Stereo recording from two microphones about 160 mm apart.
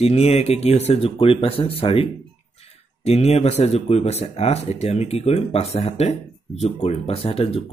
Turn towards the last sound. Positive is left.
turn(degrees=35)  # may be behind; listen again after turning